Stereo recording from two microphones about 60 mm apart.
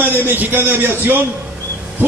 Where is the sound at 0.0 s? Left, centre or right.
Right.